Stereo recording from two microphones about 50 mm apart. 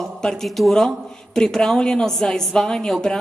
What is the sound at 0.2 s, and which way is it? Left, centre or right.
A woman's voice, centre.